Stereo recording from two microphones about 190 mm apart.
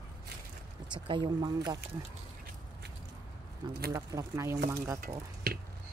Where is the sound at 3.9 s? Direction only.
15° right (ahead or behind).